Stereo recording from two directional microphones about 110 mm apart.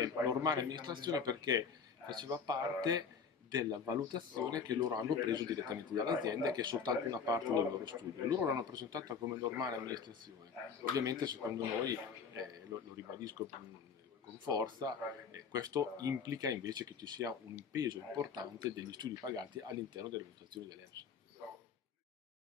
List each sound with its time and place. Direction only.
0.0 s speech: 35° right (ahead or behind)
14.5 s speech: 35° right (ahead or behind)